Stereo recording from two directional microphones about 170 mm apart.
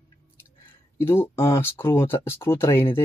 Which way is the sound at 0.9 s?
15° left (ahead or behind).